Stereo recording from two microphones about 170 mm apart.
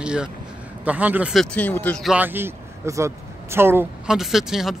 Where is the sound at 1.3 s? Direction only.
5° left (ahead or behind).